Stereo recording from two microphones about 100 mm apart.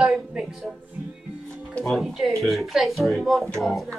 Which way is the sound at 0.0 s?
5° right (ahead or behind).